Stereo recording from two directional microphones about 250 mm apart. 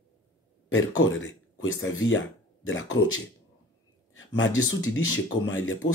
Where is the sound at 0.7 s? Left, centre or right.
Left.